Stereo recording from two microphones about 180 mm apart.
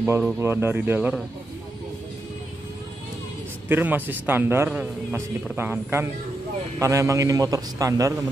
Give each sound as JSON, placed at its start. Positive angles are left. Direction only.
{"t": 0.0, "sound": "a man's voice", "side_deg": -15}
{"t": 3.6, "sound": "a man's voice", "side_deg": -10}